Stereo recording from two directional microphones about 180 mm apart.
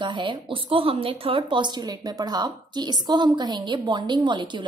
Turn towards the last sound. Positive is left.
turn(degrees=-25)  # may be behind; listen again after turning